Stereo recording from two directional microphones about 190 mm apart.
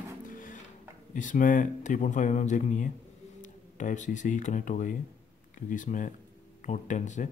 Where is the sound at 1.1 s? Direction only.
45° left (ahead or behind).